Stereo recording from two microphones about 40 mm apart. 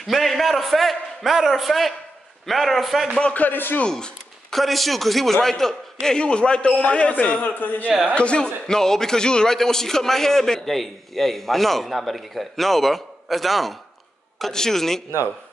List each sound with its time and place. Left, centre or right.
0.0 s a man's voice: centre
3.3 s speech: left
4.5 s a man's voice: centre; by 7.5 s left
7.6 s speech: left
8.1 s a man's voice: left
8.6 s a man's voice: centre
14.5 s a man's voice: centre